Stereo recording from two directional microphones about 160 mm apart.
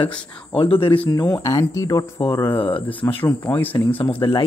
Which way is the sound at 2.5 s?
35° left (ahead or behind).